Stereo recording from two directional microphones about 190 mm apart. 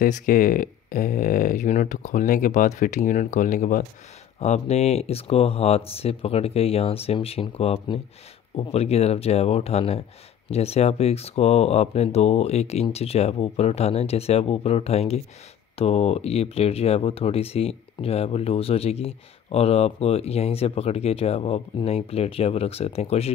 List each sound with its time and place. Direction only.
0.0 s speech: 45° left (ahead or behind)